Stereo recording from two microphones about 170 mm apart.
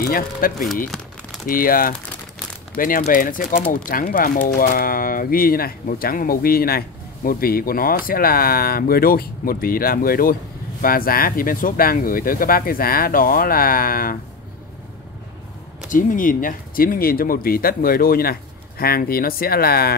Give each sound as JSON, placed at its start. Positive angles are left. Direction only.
{"t": 0.0, "sound": "speech", "side_deg": 55}
{"t": 1.5, "sound": "speech", "side_deg": 55}
{"t": 15.9, "sound": "speech", "side_deg": 50}